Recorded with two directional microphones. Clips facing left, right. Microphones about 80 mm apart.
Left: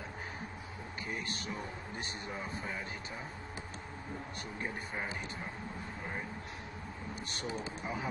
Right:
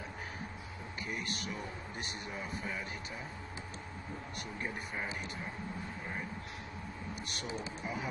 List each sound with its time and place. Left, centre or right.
1.0 s speech: left
7.2 s speech: left
7.8 s speech: left